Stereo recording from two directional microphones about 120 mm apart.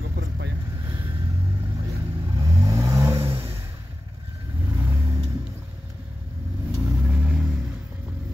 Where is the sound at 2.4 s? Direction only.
30° right (ahead or behind).